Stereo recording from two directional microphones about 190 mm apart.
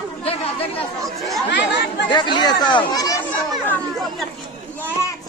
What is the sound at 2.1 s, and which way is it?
Speech, 25° left (ahead or behind).